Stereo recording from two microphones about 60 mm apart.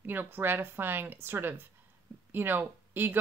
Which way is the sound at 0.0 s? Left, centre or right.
Right.